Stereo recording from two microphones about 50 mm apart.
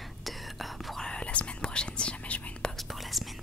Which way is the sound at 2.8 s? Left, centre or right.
Centre.